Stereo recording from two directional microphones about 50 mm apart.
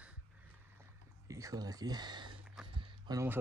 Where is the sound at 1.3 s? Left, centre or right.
Right.